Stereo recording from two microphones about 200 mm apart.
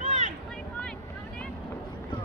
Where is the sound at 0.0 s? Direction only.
35° right (ahead or behind).